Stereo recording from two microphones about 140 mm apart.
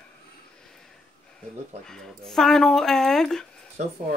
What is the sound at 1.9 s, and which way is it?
Speech, 5° left (ahead or behind).